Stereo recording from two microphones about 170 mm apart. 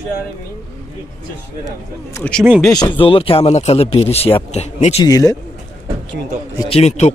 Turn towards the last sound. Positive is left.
turn(degrees=40)  # may be behind; listen again after turning